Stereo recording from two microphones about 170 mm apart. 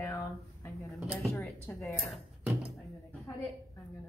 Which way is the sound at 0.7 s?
Centre (ahead or behind).